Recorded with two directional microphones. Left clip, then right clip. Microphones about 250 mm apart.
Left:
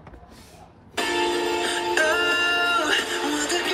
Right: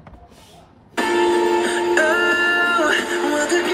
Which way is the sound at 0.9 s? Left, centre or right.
Right.